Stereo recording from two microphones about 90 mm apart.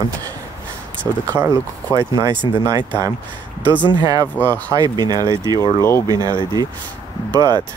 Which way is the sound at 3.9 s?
45° right (ahead or behind).